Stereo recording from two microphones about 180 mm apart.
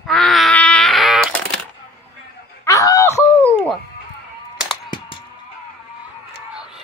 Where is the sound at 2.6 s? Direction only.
15° left (ahead or behind).